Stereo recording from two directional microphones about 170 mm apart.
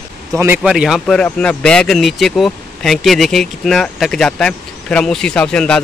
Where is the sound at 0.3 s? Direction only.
20° right (ahead or behind).